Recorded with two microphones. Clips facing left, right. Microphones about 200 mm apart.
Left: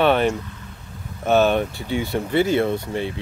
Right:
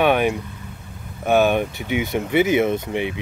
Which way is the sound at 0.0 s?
10° right (ahead or behind).